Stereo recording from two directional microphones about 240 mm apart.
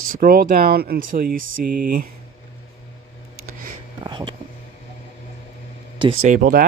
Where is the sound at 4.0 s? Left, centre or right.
Centre.